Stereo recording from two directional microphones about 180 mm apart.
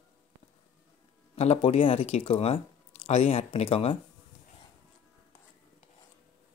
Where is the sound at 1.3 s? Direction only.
35° left (ahead or behind).